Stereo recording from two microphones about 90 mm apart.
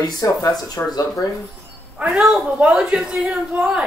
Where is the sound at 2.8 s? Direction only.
5° right (ahead or behind).